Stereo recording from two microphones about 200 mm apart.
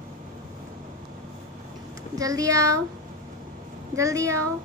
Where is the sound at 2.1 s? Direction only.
15° right (ahead or behind).